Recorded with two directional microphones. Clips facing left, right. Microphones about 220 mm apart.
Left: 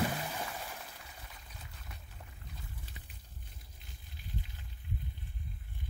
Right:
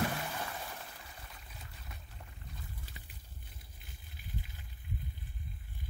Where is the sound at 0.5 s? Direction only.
5° left (ahead or behind).